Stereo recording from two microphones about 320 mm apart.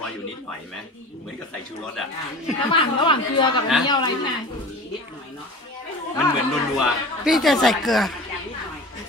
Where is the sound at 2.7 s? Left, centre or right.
Centre.